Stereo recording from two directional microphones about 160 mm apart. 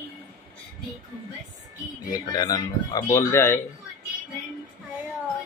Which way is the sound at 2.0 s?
25° left (ahead or behind).